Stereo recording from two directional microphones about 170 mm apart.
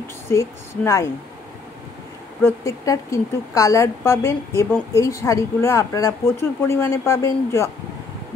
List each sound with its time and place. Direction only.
0.3 s speech: 20° left (ahead or behind)
2.4 s speech: 20° left (ahead or behind)